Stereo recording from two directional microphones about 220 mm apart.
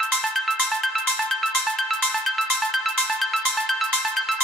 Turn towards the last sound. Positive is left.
turn(degrees=0)  # may be behind; listen again after turning